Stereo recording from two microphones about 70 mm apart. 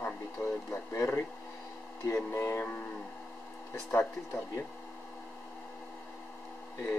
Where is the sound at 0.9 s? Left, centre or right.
Left.